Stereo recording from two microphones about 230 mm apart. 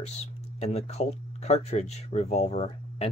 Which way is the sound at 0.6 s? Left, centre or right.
Left.